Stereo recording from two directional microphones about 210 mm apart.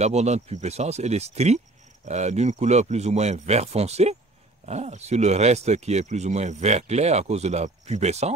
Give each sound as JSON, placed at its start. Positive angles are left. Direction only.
{"t": 0.0, "sound": "speech", "side_deg": -30}